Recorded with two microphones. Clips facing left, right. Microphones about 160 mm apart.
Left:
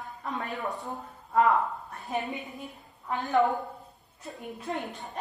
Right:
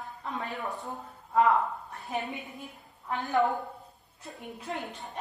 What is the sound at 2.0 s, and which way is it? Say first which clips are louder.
Speech: left 2 dB; 20° left (ahead or behind).